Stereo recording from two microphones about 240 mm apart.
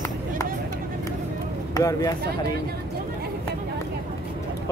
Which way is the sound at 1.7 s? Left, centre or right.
Centre.